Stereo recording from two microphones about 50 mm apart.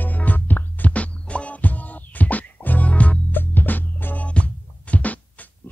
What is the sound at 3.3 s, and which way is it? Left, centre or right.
Music, left.